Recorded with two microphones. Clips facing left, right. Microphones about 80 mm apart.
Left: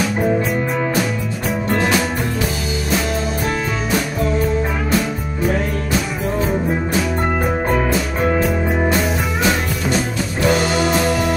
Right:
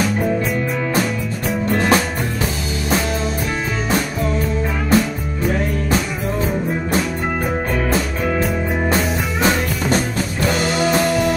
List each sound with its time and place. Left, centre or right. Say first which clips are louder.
4.9 s music: right 2 dB; centre
8.8 s music: left 1 dB; right
9.9 s music: even; centre